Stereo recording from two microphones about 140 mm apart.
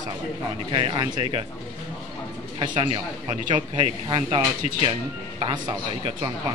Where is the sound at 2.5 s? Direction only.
40° right (ahead or behind).